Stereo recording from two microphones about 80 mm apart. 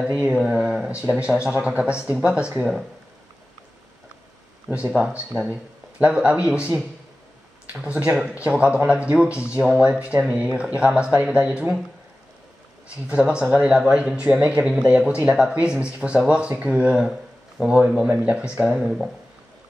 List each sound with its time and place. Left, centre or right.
0.0 s speech: centre
4.6 s speech: right
4.9 s speech: centre
13.0 s speech: centre
18.8 s speech: centre